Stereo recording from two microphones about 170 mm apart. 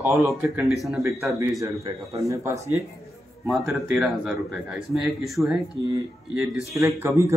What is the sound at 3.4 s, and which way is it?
Speech, centre (ahead or behind).